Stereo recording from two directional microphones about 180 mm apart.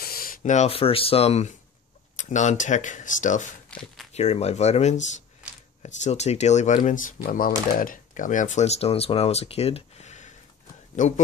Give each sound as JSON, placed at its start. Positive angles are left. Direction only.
{"t": 0.0, "sound": "speech", "side_deg": 55}
{"t": 3.7, "sound": "speech", "side_deg": 0}
{"t": 4.1, "sound": "speech", "side_deg": 35}